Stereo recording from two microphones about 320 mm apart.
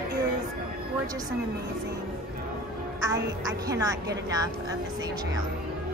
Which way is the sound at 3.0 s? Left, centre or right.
Centre.